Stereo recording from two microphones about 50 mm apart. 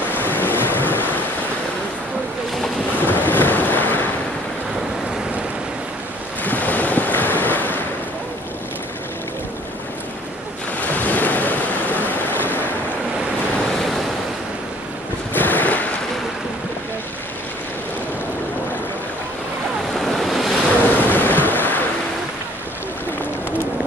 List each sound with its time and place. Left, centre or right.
0.1 s waves: left
3.0 s waves: left
6.4 s waves: left
10.8 s waves: left
13.6 s waves: centre
15.3 s waves: left
19.9 s waves: centre
20.7 s waves: left